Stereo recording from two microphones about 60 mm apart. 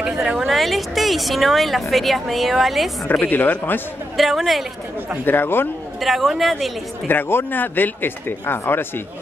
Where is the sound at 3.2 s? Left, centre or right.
Left.